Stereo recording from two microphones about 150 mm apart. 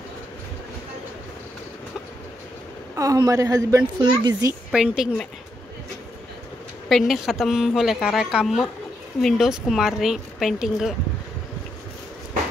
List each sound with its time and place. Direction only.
3.0 s a woman's voice: 20° right (ahead or behind)
4.6 s speech: 5° right (ahead or behind)
6.9 s speech: centre (ahead or behind)